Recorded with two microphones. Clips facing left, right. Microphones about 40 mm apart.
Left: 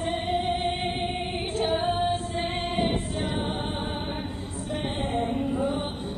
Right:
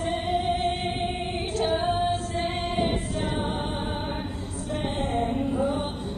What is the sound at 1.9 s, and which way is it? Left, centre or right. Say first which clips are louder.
Female singing: right 1 dB; left.